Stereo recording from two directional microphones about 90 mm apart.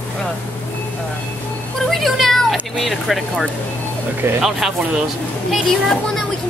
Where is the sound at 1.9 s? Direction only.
Centre (ahead or behind).